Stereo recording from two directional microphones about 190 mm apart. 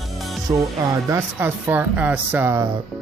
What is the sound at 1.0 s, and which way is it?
Speech, 15° right (ahead or behind).